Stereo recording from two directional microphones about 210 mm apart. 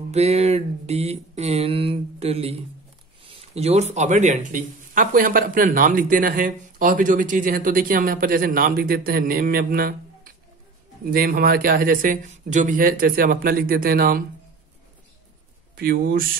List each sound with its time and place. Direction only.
0.1 s a sound: 30° right (ahead or behind)
3.3 s speech: 30° right (ahead or behind); by 9.9 s 45° right (ahead or behind)
11.1 s a man's voice: 45° right (ahead or behind)
15.7 s speech: 45° right (ahead or behind)